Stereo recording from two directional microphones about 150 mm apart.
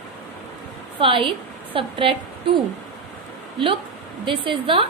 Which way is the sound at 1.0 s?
35° right (ahead or behind).